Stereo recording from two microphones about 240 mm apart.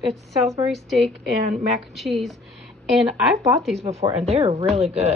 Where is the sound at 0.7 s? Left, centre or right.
Centre.